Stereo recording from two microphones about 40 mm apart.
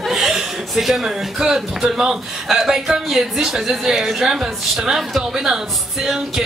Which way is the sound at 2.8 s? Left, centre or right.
Centre.